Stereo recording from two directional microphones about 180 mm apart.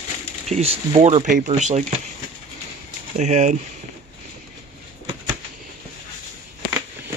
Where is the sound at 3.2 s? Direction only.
40° right (ahead or behind).